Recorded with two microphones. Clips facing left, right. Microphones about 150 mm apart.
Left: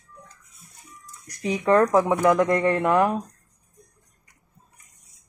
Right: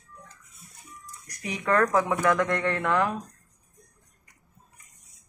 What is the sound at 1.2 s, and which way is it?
Speech, 25° left (ahead or behind).